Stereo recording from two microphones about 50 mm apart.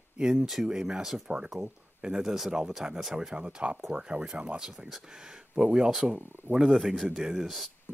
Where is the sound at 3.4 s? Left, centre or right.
Right.